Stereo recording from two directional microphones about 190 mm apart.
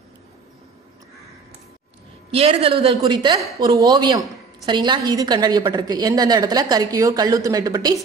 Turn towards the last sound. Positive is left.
turn(degrees=-20)  # may be behind; listen again after turning